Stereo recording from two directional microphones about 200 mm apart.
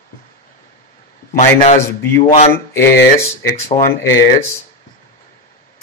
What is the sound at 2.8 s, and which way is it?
Speech, 50° left (ahead or behind).